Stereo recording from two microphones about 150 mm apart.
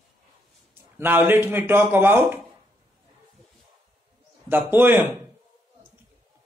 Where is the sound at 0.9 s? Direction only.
15° right (ahead or behind).